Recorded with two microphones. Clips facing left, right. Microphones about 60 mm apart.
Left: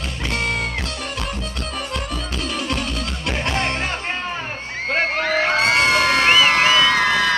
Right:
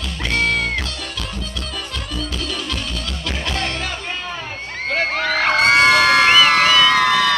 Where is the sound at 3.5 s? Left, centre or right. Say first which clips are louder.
Left 2 dB; left.